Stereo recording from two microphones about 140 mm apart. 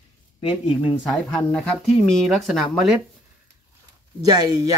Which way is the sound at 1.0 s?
5° left (ahead or behind).